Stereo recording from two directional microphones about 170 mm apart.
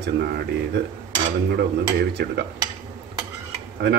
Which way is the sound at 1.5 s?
75° right (ahead or behind).